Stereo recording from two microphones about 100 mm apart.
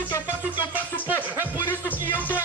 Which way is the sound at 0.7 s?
15° right (ahead or behind).